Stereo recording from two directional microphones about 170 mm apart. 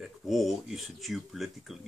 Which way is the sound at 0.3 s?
Centre (ahead or behind).